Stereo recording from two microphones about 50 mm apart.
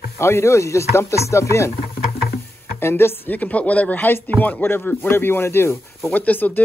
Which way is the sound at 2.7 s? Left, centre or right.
Left.